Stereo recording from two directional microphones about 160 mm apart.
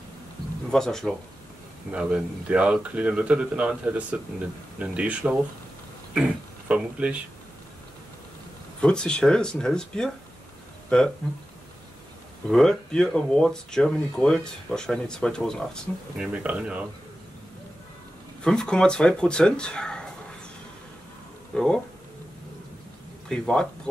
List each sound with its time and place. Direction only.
0.7 s speech: 5° left (ahead or behind)
1.9 s speech: 10° right (ahead or behind)
6.7 s speech: 10° right (ahead or behind)
8.8 s speech: 5° left (ahead or behind)
12.4 s speech: 5° left (ahead or behind)
16.4 s speech: 5° right (ahead or behind)
18.4 s speech: 5° left (ahead or behind)
21.5 s speech: 5° left (ahead or behind)
23.2 s speech: 5° left (ahead or behind)